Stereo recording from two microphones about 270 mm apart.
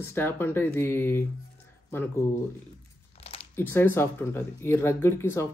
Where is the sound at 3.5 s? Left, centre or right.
Centre.